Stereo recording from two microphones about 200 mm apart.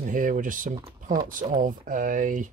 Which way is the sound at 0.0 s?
40° right (ahead or behind).